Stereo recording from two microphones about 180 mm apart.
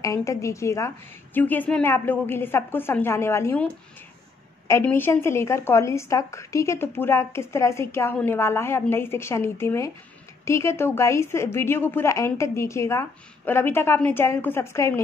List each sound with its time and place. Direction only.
0.0 s a woman's voice: 15° left (ahead or behind)